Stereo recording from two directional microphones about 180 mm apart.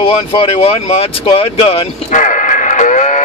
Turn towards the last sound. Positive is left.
turn(degrees=45)  # may be behind; listen again after turning